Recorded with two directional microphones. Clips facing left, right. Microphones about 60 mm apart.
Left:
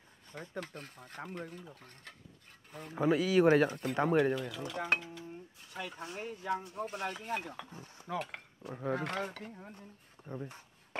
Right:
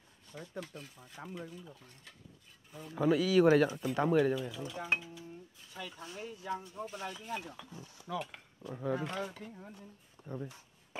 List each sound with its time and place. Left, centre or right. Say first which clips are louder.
0.3 s speech: left 2 dB; left
2.9 s speech: even; left
4.2 s speech: even; left
5.7 s speech: left 3 dB; left
9.5 s speech: even; left
10.2 s speech: even; centre